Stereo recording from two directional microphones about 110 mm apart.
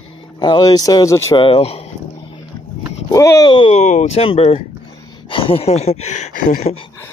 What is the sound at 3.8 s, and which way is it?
Speech, 90° left.